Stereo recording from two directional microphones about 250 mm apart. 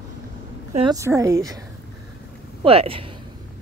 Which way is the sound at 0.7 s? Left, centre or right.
Right.